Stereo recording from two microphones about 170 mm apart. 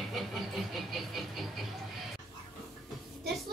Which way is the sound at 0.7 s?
Centre (ahead or behind).